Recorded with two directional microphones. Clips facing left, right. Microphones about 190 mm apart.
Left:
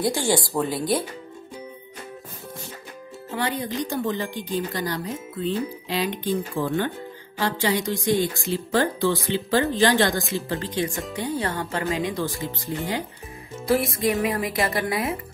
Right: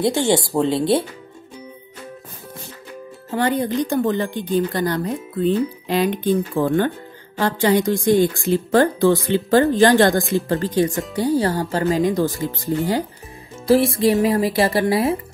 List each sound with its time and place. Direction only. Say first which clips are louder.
0.0 s speech: right 5 dB; 25° right (ahead or behind)
3.3 s a woman's voice: right 7 dB; 50° right (ahead or behind); by 15.1 s 30° right (ahead or behind)